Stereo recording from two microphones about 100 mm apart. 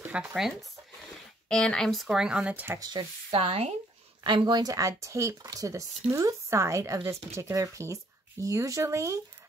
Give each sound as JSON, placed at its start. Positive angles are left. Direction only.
{"t": 0.1, "sound": "speech", "side_deg": -5}
{"t": 2.8, "sound": "speech", "side_deg": -40}
{"t": 3.3, "sound": "speech", "side_deg": -80}
{"t": 4.2, "sound": "speech", "side_deg": -45}